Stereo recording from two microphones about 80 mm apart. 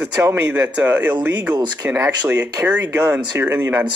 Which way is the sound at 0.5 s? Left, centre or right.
Right.